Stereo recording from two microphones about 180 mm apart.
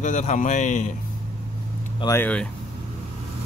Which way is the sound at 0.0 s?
40° left (ahead or behind).